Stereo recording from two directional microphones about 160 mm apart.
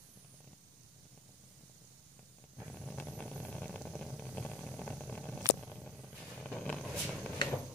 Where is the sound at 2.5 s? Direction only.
Centre (ahead or behind).